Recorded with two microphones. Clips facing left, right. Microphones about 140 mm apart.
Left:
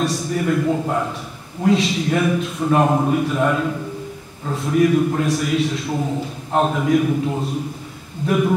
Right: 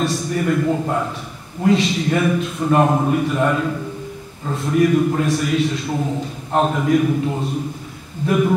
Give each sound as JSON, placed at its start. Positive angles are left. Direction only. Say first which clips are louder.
{"t": 0.0, "sound": "a man's voice", "louder": "right 1 dB", "side_deg": 0}